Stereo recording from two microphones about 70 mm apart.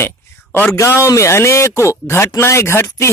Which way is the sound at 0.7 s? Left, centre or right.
Left.